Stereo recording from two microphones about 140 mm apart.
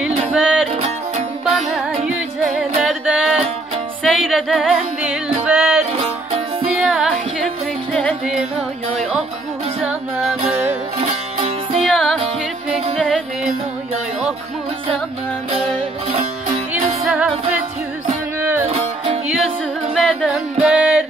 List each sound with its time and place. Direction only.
0.3 s music: centre (ahead or behind)
0.7 s music: 55° right (ahead or behind)
2.9 s music: 5° right (ahead or behind)
9.8 s music: 10° right (ahead or behind)
11.0 s music: 45° right (ahead or behind)
11.8 s music: 5° left (ahead or behind)
15.5 s music: 40° right (ahead or behind)
18.4 s music: 15° right (ahead or behind)
19.9 s music: 5° right (ahead or behind)